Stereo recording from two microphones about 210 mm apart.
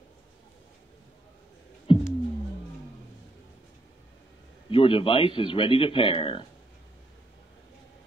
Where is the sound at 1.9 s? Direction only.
25° left (ahead or behind).